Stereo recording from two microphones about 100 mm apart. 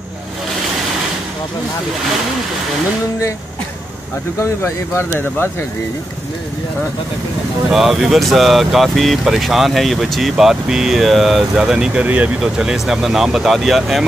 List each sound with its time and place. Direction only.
4.4 s speech: 25° left (ahead or behind)
7.7 s speech: centre (ahead or behind)